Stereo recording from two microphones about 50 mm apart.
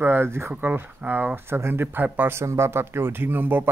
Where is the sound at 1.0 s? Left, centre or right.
Right.